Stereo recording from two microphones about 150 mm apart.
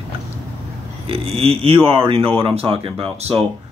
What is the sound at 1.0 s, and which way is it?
Speech, 40° right (ahead or behind).